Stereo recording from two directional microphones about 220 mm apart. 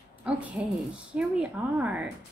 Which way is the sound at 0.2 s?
5° right (ahead or behind).